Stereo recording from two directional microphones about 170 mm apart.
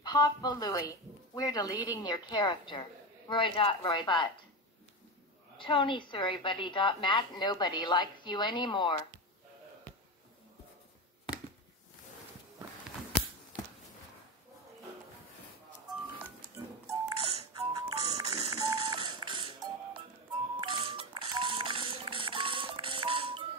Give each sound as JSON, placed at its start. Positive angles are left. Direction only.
{"t": 0.0, "sound": "speech", "side_deg": 25}
{"t": 5.6, "sound": "speech", "side_deg": 30}
{"t": 15.9, "sound": "music", "side_deg": -25}
{"t": 17.6, "sound": "music", "side_deg": -20}
{"t": 20.5, "sound": "a sound", "side_deg": -30}